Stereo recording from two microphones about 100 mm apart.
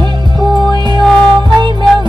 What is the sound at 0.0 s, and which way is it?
Music, 50° right (ahead or behind).